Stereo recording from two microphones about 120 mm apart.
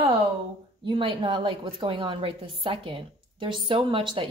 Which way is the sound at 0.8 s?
45° right (ahead or behind).